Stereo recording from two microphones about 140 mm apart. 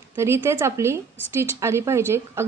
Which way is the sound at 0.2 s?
20° right (ahead or behind).